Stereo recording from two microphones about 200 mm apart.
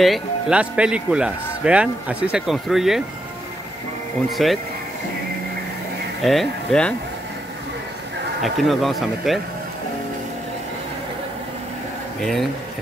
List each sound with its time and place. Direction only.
0.0 s speech: 5° right (ahead or behind)
4.4 s speech: centre (ahead or behind)
6.2 s speech: centre (ahead or behind)
8.4 s speech: centre (ahead or behind)
12.2 s speech: centre (ahead or behind)